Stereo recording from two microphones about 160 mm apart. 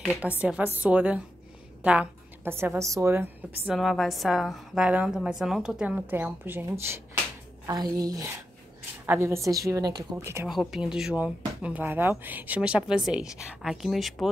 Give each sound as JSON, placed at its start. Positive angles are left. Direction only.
{"t": 0.0, "sound": "a woman's voice", "side_deg": -5}
{"t": 3.6, "sound": "a woman's voice", "side_deg": 0}
{"t": 10.5, "sound": "speech", "side_deg": 0}